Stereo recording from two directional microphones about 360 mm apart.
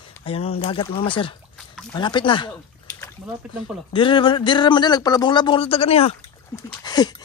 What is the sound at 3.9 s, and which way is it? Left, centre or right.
A man's voice, centre.